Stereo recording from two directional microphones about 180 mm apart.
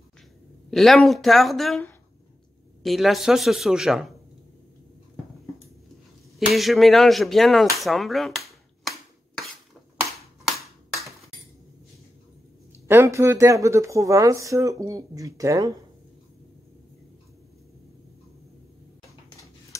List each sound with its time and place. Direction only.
0.7 s speech: centre (ahead or behind)
2.8 s speech: centre (ahead or behind)
6.5 s speech: centre (ahead or behind)
12.8 s speech: 15° right (ahead or behind)
19.7 s a sound: 15° left (ahead or behind)